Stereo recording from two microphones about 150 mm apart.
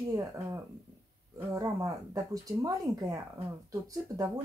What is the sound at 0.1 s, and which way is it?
Speech, 20° right (ahead or behind).